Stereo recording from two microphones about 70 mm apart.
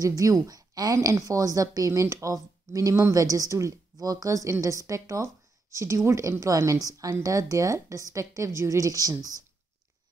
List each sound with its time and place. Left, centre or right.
0.0 s a woman's voice: right